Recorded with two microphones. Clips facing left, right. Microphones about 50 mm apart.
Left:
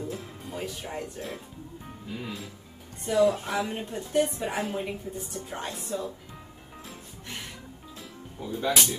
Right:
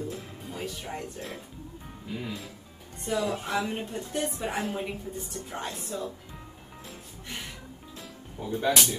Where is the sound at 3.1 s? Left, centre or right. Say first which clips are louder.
Left 5 dB; centre.